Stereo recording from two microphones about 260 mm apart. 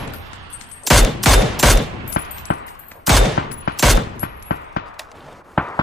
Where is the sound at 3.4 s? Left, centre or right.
Left.